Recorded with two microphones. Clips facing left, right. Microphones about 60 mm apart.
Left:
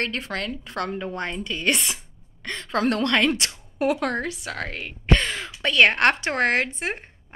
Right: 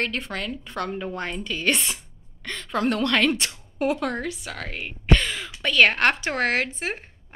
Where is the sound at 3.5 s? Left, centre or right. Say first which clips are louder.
Left 1 dB; centre.